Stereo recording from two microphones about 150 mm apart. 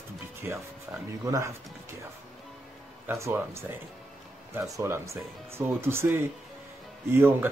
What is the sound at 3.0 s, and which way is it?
Speech, 15° right (ahead or behind).